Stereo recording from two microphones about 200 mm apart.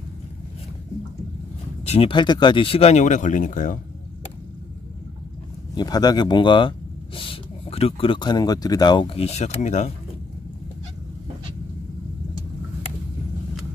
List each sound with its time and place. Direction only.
1.9 s speech: 25° left (ahead or behind)
5.8 s speech: 20° left (ahead or behind); by 9.9 s 35° left (ahead or behind)